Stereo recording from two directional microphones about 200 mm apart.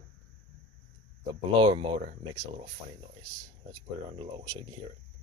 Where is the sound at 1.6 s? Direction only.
25° right (ahead or behind).